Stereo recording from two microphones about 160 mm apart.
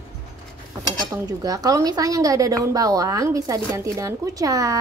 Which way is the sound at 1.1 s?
20° right (ahead or behind).